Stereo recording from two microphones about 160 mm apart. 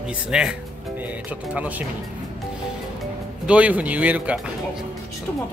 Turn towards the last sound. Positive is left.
turn(degrees=-10)  # may be behind; listen again after turning